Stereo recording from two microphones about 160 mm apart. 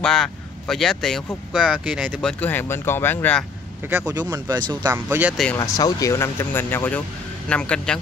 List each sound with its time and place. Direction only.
0.0 s speech: 5° left (ahead or behind)
2.4 s speech: 15° left (ahead or behind)
3.8 s speech: 10° right (ahead or behind)
5.6 s speech: 20° left (ahead or behind); by 8.0 s 5° left (ahead or behind)